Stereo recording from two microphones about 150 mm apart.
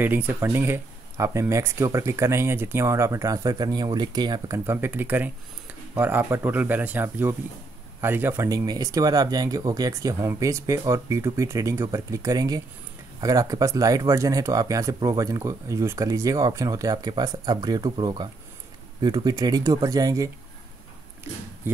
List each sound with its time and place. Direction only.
0.0 s speech: 10° right (ahead or behind); by 4.6 s 25° right (ahead or behind)
4.6 s speech: 15° right (ahead or behind)